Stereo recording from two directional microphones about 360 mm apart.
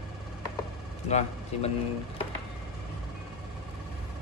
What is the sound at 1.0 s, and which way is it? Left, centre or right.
Speech, centre.